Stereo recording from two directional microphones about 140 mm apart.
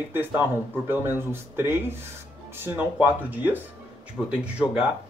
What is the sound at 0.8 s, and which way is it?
Speech, 15° right (ahead or behind).